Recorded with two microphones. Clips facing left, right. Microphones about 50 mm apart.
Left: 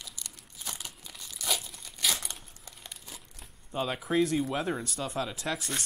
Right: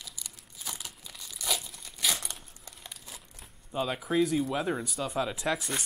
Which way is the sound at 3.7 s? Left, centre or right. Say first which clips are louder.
Even; centre.